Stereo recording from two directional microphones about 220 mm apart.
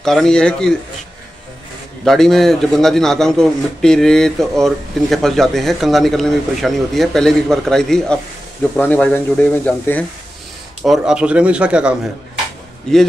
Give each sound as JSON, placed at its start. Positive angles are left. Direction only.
{"t": 0.0, "sound": "a man's voice", "side_deg": 0}
{"t": 2.0, "sound": "a man's voice", "side_deg": 0}
{"t": 10.8, "sound": "a man's voice", "side_deg": -5}